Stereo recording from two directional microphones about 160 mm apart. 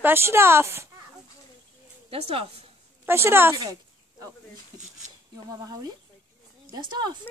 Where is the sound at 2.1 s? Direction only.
35° right (ahead or behind).